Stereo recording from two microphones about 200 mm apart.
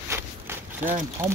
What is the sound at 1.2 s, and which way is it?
Speech, 10° right (ahead or behind).